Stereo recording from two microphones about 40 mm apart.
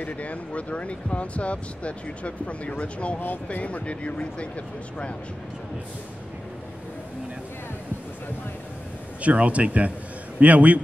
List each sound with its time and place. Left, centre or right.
0.0 s speech: left
9.2 s speech: right